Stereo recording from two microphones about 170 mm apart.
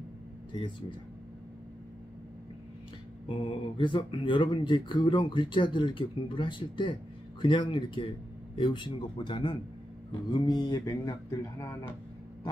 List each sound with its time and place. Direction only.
0.5 s speech: 30° left (ahead or behind)
3.3 s speech: 30° left (ahead or behind)